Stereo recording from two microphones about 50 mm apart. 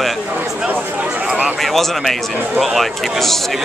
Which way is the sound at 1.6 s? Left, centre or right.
Centre.